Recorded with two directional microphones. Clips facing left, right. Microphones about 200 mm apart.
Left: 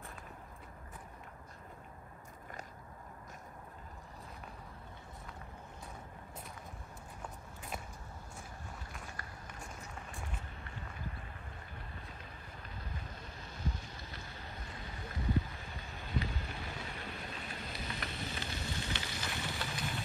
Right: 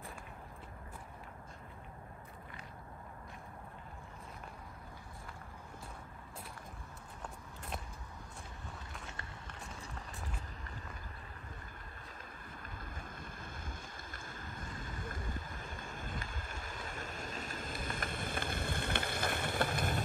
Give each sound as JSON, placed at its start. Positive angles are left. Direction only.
{"t": 9.0, "sound": "run", "side_deg": -25}
{"t": 12.6, "sound": "boat", "side_deg": -50}